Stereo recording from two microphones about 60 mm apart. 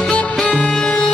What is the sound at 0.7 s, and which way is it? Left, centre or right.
Music, centre.